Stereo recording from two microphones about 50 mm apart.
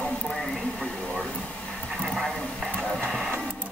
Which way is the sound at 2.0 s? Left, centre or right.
Centre.